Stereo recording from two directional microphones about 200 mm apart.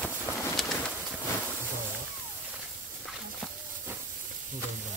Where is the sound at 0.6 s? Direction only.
Centre (ahead or behind).